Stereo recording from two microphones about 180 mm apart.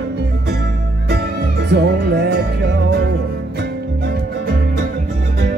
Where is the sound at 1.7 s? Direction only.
70° right (ahead or behind).